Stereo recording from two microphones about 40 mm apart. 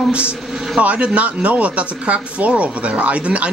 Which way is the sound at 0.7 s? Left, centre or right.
Right.